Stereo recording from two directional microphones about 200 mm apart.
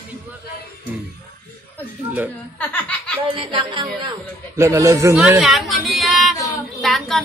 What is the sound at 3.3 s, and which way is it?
Speech, 25° right (ahead or behind).